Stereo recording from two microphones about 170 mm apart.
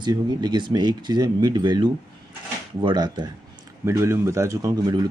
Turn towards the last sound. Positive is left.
turn(degrees=-25)  # may be behind; listen again after turning